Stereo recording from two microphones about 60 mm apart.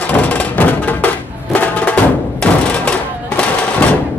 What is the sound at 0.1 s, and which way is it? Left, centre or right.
Music, left.